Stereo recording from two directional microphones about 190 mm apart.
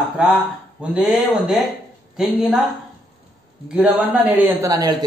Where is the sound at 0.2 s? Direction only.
5° right (ahead or behind).